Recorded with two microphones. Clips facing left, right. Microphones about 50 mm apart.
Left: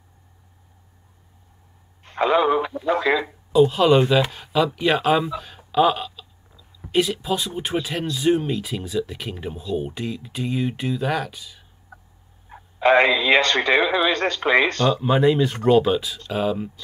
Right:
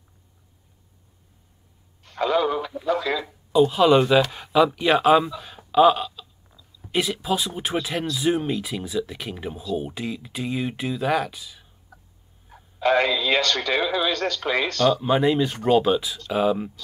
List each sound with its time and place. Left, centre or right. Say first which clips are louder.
2.0 s speech: left 3 dB; left
3.6 s speech: even; centre
5.7 s a sound: right 2 dB; centre
6.9 s speech: left 2 dB; centre
11.9 s a sound: left 5 dB; left
12.4 s speech: left 4 dB; left
15.0 s speech: left 2 dB; centre